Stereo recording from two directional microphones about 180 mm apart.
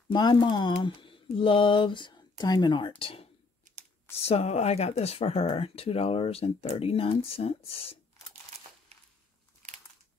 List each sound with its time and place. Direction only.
0.1 s speech: 25° left (ahead or behind)